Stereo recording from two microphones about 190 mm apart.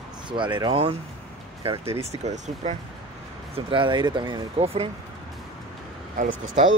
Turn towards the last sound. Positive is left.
turn(degrees=-40)  # may be behind; listen again after turning